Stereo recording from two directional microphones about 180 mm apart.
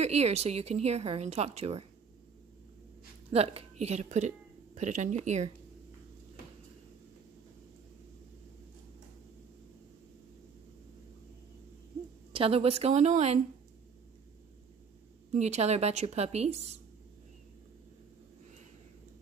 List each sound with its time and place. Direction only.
0.0 s speech: 35° right (ahead or behind)
3.3 s speech: 35° right (ahead or behind)
12.3 s speech: 30° right (ahead or behind)
15.3 s speech: 40° right (ahead or behind)